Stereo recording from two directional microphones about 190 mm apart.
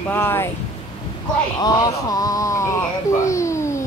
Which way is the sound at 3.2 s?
15° left (ahead or behind).